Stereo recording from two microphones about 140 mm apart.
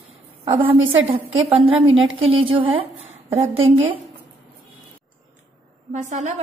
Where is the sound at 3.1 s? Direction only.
15° right (ahead or behind).